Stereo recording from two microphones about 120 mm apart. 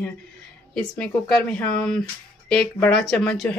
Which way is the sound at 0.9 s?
10° left (ahead or behind).